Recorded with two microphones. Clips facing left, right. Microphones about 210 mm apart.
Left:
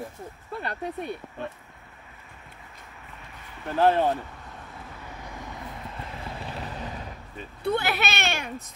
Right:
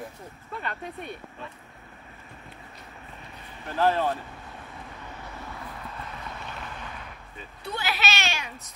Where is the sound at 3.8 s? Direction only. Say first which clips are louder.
Left 3 dB; 25° left (ahead or behind).